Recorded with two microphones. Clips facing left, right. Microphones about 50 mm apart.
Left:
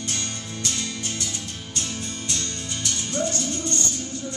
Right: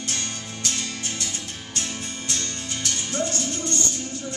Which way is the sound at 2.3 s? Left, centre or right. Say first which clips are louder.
Right 2 dB; right.